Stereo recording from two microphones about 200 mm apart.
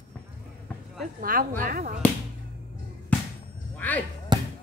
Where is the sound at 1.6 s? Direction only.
45° right (ahead or behind).